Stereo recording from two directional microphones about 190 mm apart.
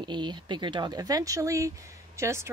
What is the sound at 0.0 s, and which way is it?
Speech, 25° right (ahead or behind).